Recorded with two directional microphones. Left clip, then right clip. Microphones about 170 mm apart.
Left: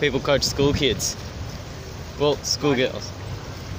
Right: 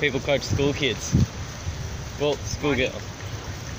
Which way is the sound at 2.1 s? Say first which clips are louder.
Left 4 dB; 25° left (ahead or behind).